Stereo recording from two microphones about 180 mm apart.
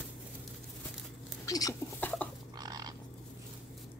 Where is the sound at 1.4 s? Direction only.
20° left (ahead or behind).